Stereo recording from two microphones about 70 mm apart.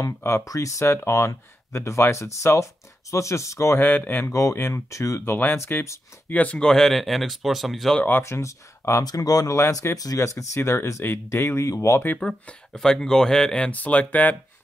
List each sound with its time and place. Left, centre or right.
0.5 s speech: left
0.8 s speech: left
3.8 s speech: left
4.3 s speech: left; by 8.0 s centre
8.2 s speech: left
9.0 s speech: left
12.2 s speech: centre
13.7 s speech: left